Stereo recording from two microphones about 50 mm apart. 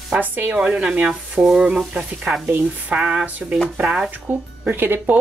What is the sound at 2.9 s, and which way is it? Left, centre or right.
Frying, right.